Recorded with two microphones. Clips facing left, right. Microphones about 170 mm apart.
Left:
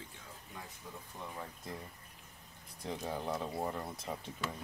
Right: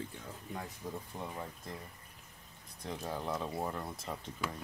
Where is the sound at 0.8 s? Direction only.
40° right (ahead or behind).